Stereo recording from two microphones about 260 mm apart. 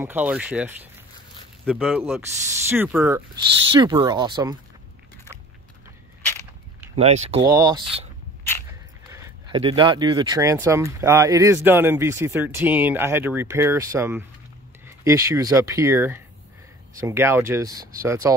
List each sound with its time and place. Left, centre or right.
0.0 s speech: centre
7.0 s speech: right
7.4 s speech: centre
9.1 s speech: centre